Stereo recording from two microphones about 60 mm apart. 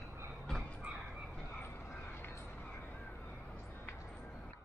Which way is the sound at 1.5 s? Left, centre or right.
Left.